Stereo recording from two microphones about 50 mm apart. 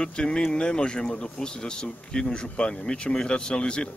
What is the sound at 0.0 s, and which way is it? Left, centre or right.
Speech, centre.